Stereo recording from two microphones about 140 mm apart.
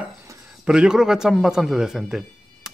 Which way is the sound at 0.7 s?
5° right (ahead or behind).